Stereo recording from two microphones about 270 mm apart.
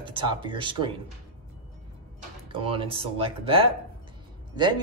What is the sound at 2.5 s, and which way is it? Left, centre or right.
Speech, centre.